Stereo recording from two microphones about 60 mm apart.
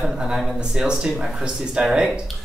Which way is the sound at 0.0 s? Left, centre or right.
Centre.